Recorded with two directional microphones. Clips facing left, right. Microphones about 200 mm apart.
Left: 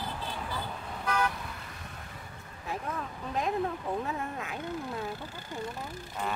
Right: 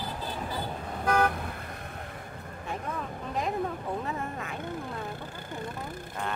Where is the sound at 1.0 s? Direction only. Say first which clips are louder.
Right 5 dB; 50° right (ahead or behind).